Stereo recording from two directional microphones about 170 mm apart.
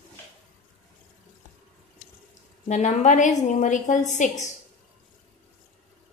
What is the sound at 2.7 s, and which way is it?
A woman's voice, 45° left (ahead or behind).